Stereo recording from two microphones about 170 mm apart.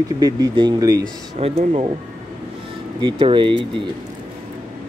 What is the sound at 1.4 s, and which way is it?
Speech, 35° right (ahead or behind).